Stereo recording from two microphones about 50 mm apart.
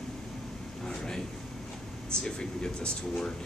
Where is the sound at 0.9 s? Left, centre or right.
Centre.